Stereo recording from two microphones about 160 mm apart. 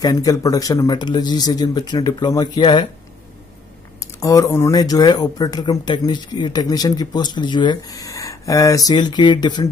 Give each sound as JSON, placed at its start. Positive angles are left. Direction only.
{"t": 0.0, "sound": "speech", "side_deg": 25}
{"t": 4.0, "sound": "speech", "side_deg": 20}